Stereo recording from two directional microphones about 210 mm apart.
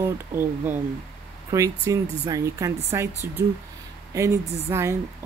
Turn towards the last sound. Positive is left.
turn(degrees=-15)  # may be behind; listen again after turning